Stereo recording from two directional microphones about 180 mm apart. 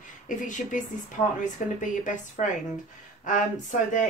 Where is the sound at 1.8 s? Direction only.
45° left (ahead or behind).